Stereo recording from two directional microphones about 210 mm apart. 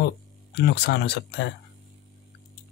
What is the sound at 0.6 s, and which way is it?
Speech, 50° left (ahead or behind).